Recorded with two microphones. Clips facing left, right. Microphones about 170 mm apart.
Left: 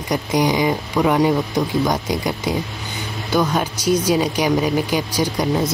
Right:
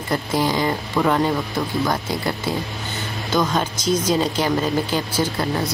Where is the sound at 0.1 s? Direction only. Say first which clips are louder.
Left 3 dB; 15° left (ahead or behind).